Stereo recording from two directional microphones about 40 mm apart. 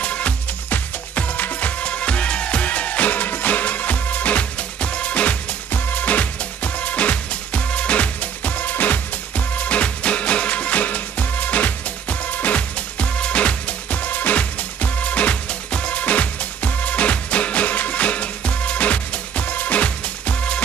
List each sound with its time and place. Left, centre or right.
0.0 s music: left
9.6 s music: left